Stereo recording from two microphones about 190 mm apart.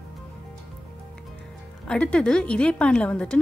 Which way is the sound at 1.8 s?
5° left (ahead or behind).